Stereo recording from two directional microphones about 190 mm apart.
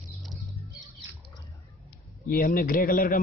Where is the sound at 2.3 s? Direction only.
50° left (ahead or behind).